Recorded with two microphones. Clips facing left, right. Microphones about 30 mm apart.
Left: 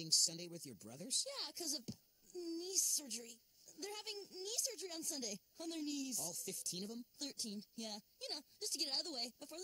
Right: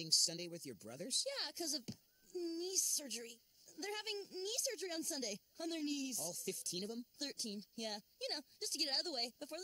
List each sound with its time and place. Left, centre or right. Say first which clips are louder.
0.0 s a woman's voice: right 1 dB; right
6.1 s speech: right 1 dB; centre
6.6 s a woman's voice: right 3 dB; right